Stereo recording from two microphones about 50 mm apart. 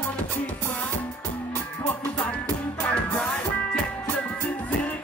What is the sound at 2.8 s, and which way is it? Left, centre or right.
Music, left.